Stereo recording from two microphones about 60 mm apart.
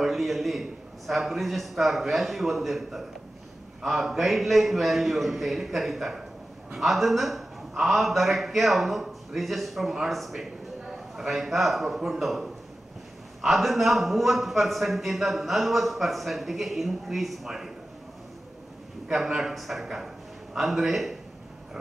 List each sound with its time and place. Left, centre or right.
0.0 s a man's voice: centre
19.0 s a man's voice: centre